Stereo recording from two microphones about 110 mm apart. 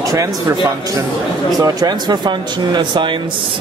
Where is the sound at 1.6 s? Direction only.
35° right (ahead or behind).